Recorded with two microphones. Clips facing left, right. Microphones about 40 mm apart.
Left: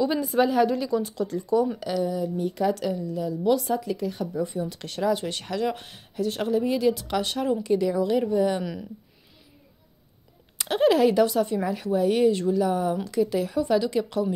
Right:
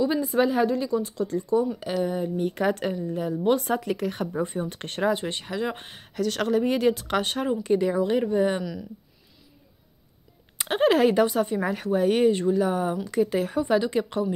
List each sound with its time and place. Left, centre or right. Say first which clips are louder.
0.2 s speech: left 1 dB; centre
0.8 s speech: even; left
1.5 s speech: left 1 dB; left
2.0 s a woman's voice: right 1 dB; right
5.1 s speech: left 1 dB; right
6.1 s a woman's voice: right 1 dB; right
10.6 s speech: even; right
11.6 s speech: even; right